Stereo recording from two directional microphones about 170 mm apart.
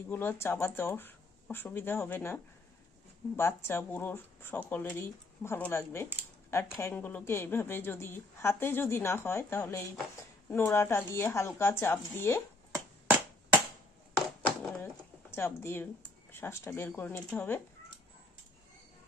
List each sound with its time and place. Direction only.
0.1 s a woman's voice: 10° left (ahead or behind)
14.1 s a sound: 10° left (ahead or behind)
15.3 s a woman's voice: 15° left (ahead or behind)